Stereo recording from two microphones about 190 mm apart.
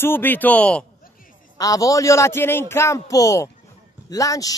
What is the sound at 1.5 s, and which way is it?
A man's voice, 20° left (ahead or behind).